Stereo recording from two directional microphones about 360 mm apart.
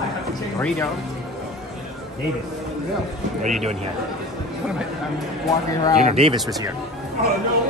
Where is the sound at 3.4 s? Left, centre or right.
Centre.